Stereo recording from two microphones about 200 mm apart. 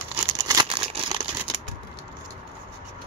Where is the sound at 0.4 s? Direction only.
20° right (ahead or behind).